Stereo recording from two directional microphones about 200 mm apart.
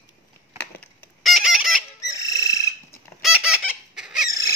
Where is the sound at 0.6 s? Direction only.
5° left (ahead or behind).